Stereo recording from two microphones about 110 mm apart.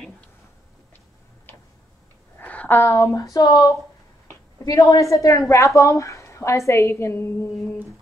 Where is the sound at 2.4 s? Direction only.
15° left (ahead or behind).